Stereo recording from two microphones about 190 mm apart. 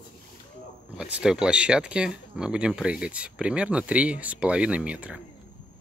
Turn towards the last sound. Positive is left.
turn(degrees=-5)  # may be behind; listen again after turning